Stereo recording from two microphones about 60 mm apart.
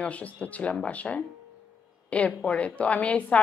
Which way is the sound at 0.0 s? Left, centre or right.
Left.